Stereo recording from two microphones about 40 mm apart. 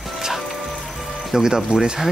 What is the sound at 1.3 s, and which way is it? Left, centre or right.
Speech, centre.